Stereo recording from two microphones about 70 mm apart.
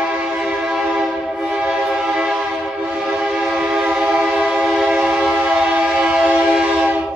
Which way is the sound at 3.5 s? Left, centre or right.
Centre.